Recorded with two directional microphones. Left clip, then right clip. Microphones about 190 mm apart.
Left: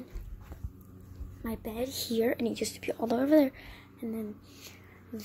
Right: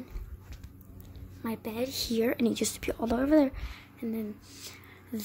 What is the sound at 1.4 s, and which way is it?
A woman's voice, 10° right (ahead or behind).